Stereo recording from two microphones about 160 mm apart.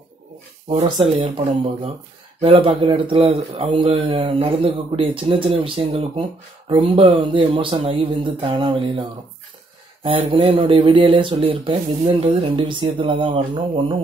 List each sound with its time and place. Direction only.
0.8 s speech: 30° right (ahead or behind)
10.0 s speech: 35° right (ahead or behind)